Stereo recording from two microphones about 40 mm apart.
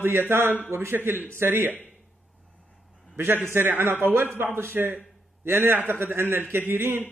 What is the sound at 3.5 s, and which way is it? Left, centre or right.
Speech, right.